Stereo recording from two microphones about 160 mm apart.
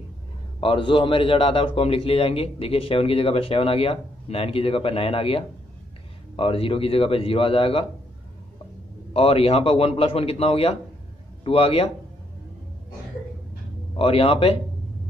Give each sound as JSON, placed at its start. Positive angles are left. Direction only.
{"t": 0.6, "sound": "a man's voice", "side_deg": 30}
{"t": 9.1, "sound": "a man's voice", "side_deg": 35}
{"t": 13.9, "sound": "a man's voice", "side_deg": 35}